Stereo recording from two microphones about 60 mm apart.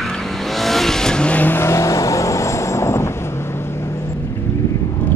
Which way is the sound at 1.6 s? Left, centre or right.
Left.